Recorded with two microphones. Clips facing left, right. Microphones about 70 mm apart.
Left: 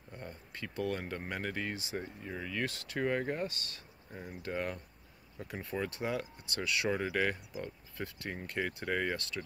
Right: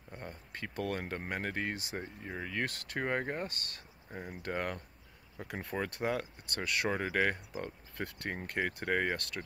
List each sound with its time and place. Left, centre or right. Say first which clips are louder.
0.2 s speech: right 1 dB; right
2.0 s speech: even; right